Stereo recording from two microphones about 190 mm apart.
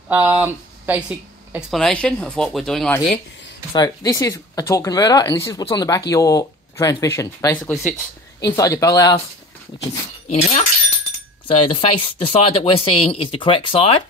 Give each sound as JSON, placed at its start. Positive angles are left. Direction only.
{"t": 0.1, "sound": "speech", "side_deg": -10}
{"t": 3.7, "sound": "speech", "side_deg": 20}
{"t": 10.3, "sound": "speech", "side_deg": 30}